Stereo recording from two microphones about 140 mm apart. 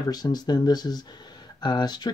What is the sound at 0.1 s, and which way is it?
Speech, 30° left (ahead or behind).